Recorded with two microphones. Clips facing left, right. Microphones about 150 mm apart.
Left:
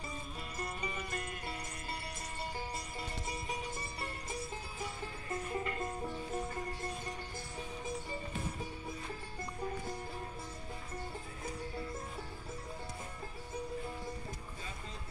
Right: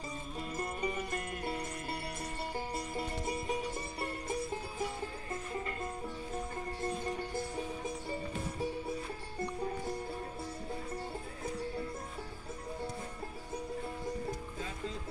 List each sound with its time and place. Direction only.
0.6 s music: 50° right (ahead or behind)